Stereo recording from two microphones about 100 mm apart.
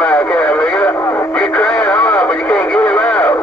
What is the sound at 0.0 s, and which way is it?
Radio, 15° left (ahead or behind).